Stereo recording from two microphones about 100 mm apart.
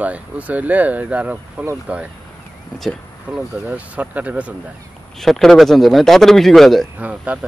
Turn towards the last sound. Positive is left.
turn(degrees=-15)  # may be behind; listen again after turning